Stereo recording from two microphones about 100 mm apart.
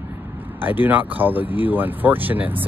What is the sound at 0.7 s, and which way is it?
Speech, 20° right (ahead or behind).